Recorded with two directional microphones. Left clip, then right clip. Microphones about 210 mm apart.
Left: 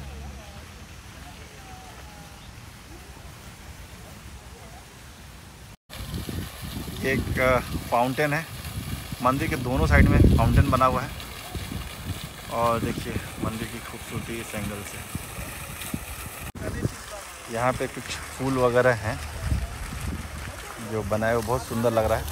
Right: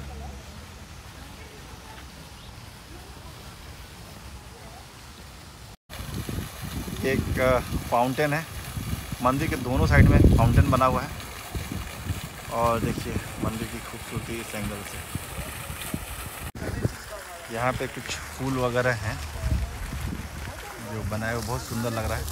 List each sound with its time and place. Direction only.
5.9 s vehicle: centre (ahead or behind)
17.5 s speech: 5° right (ahead or behind)
19.1 s a sound: 40° left (ahead or behind)
21.1 s speech: centre (ahead or behind)